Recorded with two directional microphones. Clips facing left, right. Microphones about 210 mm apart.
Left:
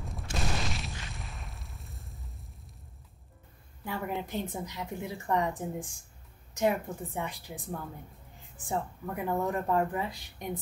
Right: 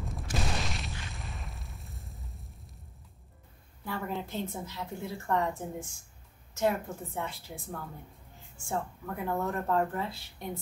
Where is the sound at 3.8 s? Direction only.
15° left (ahead or behind).